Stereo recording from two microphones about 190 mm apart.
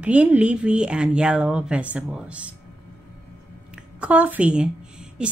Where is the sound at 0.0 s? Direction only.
5° right (ahead or behind).